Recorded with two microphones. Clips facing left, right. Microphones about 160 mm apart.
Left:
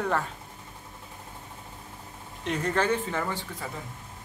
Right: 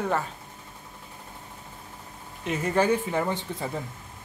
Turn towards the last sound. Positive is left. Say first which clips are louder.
# right 4 dB
turn(degrees=-20)  # may be behind; listen again after turning